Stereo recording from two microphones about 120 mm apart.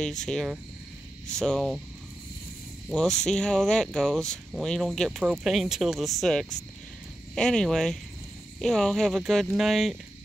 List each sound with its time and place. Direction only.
0.0 s speech: 5° left (ahead or behind)
2.9 s speech: 5° left (ahead or behind)